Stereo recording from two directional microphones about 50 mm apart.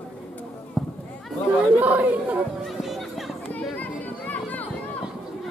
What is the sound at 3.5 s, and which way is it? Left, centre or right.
Children playing, left.